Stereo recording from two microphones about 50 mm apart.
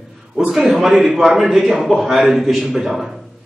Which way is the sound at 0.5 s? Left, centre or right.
Centre.